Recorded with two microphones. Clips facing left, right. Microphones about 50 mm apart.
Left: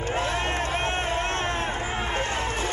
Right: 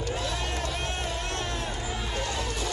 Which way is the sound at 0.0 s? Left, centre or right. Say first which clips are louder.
Left 5 dB; left.